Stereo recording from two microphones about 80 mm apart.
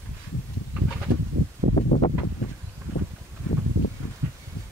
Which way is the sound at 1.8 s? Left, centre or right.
Left.